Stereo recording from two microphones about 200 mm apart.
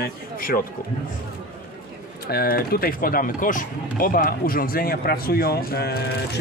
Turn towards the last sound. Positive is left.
turn(degrees=50)  # may be behind; listen again after turning